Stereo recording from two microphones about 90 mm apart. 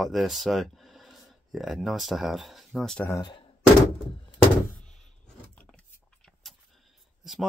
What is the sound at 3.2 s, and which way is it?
Speech, 60° left (ahead or behind).